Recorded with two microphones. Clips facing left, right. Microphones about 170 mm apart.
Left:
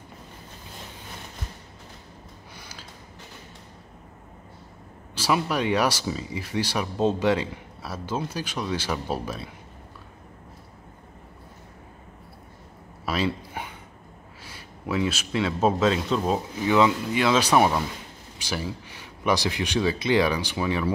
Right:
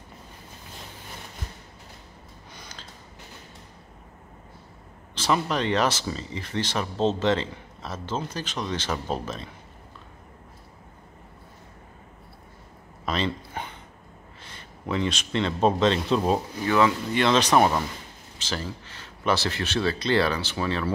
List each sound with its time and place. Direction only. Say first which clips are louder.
5.1 s speech: even; 10° left (ahead or behind)
13.0 s a sound: left 1 dB; 10° left (ahead or behind)
14.4 s speech: left 1 dB; 5° left (ahead or behind)
16.6 s speech: left 2 dB; 15° left (ahead or behind)